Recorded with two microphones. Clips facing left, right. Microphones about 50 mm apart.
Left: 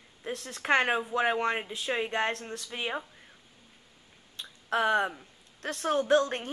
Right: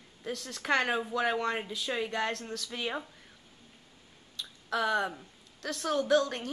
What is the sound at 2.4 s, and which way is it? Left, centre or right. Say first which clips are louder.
Speech: left 1 dB; centre.